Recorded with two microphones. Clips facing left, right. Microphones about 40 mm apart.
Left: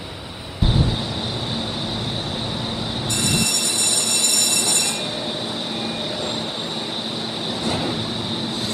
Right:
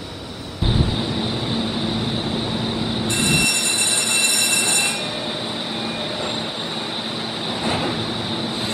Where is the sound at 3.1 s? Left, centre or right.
Right.